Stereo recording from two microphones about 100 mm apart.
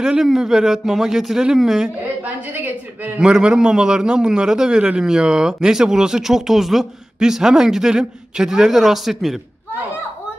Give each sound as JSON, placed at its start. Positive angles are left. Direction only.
{"t": 0.0, "sound": "a man's voice", "side_deg": -5}
{"t": 2.2, "sound": "a woman's voice", "side_deg": -15}
{"t": 3.2, "sound": "a man's voice", "side_deg": -5}